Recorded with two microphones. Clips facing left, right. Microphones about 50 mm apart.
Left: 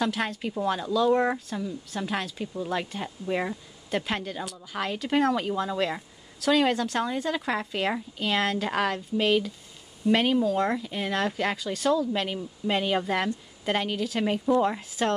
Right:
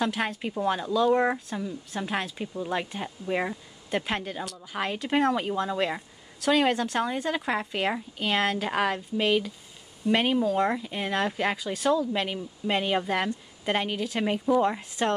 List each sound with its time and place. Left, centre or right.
0.0 s speech: centre